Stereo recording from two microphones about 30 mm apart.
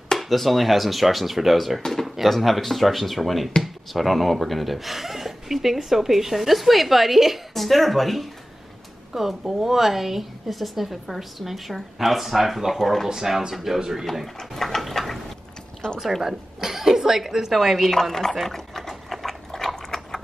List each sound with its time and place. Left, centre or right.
0.2 s speech: centre
1.8 s speech: centre
2.0 s speech: centre
9.4 s a woman's voice: centre
14.2 s a sound: centre
16.0 s a woman's voice: centre
17.5 s speech: centre
17.9 s speech: centre
18.4 s a sound: centre